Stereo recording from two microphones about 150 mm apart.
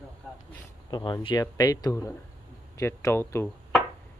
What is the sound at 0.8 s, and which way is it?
Speech, 30° left (ahead or behind).